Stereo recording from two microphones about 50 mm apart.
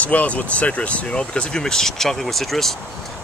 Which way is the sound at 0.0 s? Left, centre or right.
Left.